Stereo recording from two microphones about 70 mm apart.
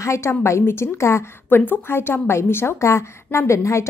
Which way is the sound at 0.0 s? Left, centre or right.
Left.